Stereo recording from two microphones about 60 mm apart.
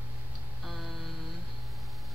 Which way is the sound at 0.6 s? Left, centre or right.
Centre.